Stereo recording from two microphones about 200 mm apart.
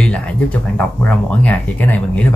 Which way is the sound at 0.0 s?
5° left (ahead or behind).